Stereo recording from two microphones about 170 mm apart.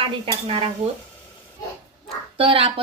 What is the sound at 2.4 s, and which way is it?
Speech, 35° right (ahead or behind).